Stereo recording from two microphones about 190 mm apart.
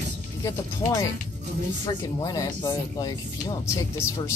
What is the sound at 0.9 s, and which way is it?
Speech, 20° left (ahead or behind).